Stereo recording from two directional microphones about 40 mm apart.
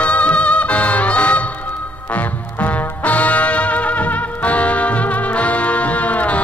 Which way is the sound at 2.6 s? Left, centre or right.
Left.